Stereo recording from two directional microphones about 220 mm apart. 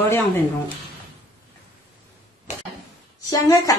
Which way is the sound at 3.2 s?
15° left (ahead or behind).